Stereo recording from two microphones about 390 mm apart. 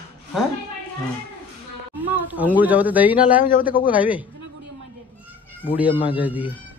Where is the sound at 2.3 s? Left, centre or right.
Centre.